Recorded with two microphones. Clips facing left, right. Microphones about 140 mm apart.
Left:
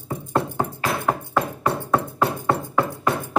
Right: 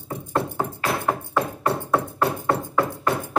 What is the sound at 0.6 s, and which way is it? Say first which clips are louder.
Music: left 1 dB; centre (ahead or behind).